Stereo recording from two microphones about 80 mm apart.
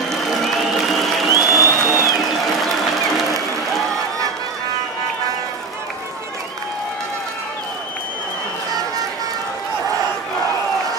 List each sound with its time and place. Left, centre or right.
0.1 s applause: centre
1.3 s music: left